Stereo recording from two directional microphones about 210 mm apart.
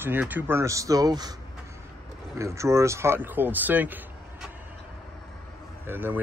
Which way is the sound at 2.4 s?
15° right (ahead or behind).